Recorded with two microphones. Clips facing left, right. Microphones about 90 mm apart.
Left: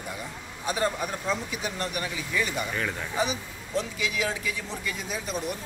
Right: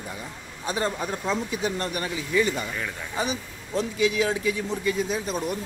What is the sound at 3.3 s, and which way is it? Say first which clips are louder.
Speech: right 1 dB; 40° right (ahead or behind).